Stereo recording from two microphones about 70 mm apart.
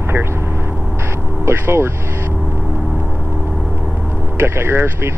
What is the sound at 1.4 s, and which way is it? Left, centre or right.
Speech, right.